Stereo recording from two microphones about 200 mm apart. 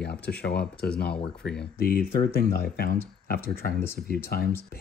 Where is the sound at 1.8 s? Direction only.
45° left (ahead or behind).